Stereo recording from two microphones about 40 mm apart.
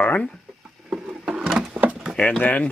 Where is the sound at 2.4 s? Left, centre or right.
Left.